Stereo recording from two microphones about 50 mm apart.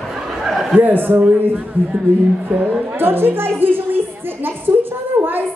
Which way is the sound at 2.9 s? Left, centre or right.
Right.